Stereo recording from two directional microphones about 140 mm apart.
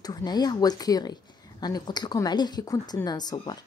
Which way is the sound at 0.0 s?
30° left (ahead or behind).